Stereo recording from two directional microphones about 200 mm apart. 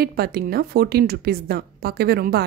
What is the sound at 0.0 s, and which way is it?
A woman's voice, 50° right (ahead or behind).